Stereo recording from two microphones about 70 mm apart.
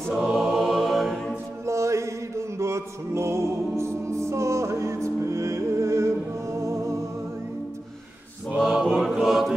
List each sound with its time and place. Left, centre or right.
0.1 s choir: centre
1.7 s music: right
8.5 s choir: centre